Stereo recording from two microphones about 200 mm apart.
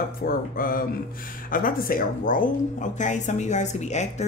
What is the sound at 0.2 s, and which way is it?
Speech, 45° left (ahead or behind).